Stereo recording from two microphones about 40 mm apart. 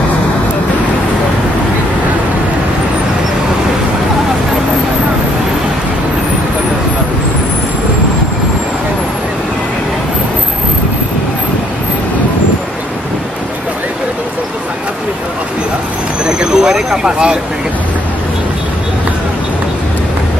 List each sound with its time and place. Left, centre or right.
16.3 s vehicle: centre